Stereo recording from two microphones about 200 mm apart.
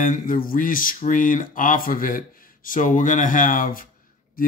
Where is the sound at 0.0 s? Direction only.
40° left (ahead or behind).